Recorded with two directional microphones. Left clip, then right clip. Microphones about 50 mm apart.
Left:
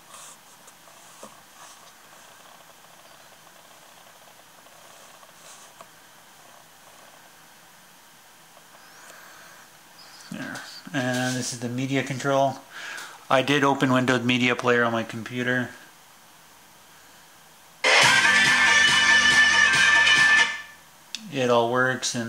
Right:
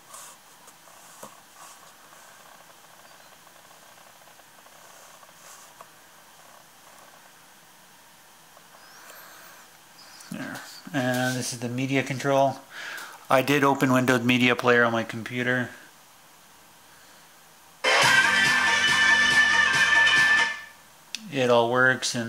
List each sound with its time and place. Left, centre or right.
9.0 s a sound: centre
10.5 s a sound: right
11.1 s speech: centre
14.0 s speech: right
14.6 s speech: right
18.0 s music: centre
21.1 s speech: right